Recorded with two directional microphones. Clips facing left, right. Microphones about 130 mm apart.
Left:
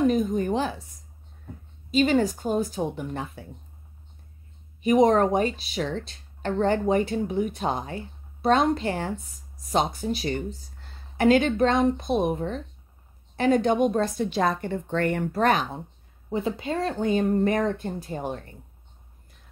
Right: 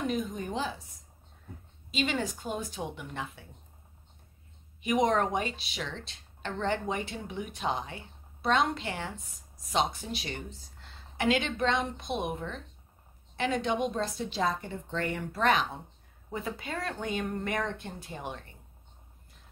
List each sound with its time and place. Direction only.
0.0 s a sound: 45° left (ahead or behind); by 0.7 s 60° left (ahead or behind)
1.9 s speech: 45° left (ahead or behind)
4.8 s a woman's voice: 35° left (ahead or behind)
16.3 s speech: 25° left (ahead or behind); by 18.5 s 40° left (ahead or behind)